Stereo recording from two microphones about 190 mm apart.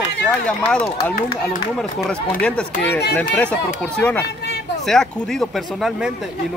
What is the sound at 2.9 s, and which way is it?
Speech, 60° left (ahead or behind).